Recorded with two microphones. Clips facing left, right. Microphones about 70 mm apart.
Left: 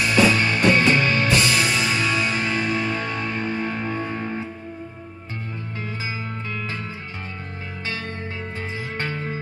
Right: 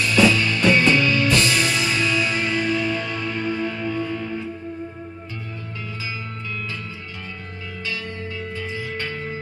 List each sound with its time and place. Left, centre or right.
0.0 s music: left
1.3 s music: centre
1.7 s music: left
8.5 s music: left